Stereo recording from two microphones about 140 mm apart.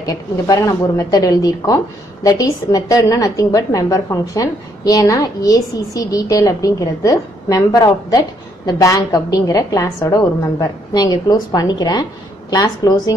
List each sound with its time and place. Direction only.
0.0 s a woman's voice: 25° left (ahead or behind)